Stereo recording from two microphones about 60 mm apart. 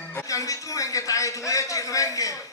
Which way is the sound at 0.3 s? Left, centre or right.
Left.